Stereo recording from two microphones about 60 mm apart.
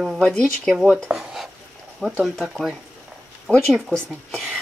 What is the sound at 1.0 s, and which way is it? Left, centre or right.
Stir, centre.